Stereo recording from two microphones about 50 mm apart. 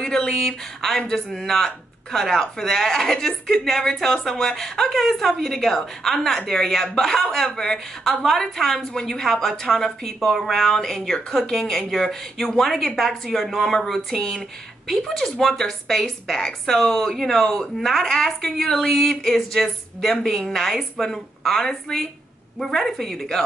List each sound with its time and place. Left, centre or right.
0.0 s a woman's voice: centre